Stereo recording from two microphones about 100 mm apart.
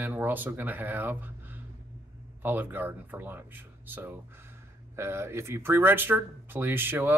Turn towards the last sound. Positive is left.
turn(degrees=-20)  # may be behind; listen again after turning